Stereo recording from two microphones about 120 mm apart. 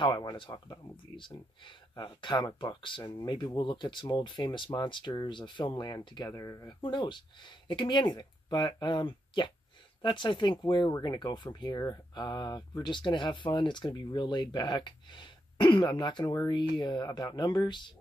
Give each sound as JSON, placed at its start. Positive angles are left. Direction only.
{"t": 0.0, "sound": "speech", "side_deg": 35}
{"t": 6.8, "sound": "speech", "side_deg": 40}